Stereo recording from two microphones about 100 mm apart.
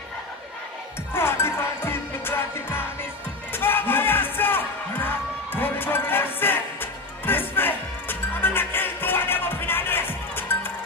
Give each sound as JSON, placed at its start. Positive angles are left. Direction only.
{"t": 1.1, "sound": "music", "side_deg": 25}